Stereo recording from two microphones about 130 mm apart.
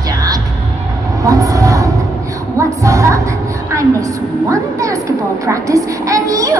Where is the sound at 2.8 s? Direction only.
25° right (ahead or behind).